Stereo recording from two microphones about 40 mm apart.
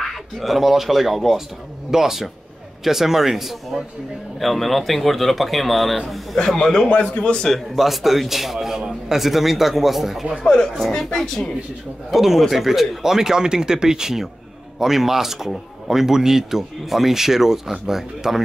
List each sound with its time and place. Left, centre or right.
0.0 s a man's voice: centre
4.4 s a man's voice: centre
6.3 s a man's voice: centre
6.9 s a man's voice: left
7.3 s a man's voice: centre
7.7 s a man's voice: centre
10.8 s a man's voice: centre
12.1 s a man's voice: centre